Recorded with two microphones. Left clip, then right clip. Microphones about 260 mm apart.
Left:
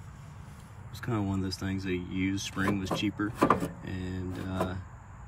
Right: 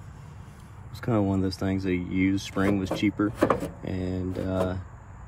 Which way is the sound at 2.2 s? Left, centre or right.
Centre.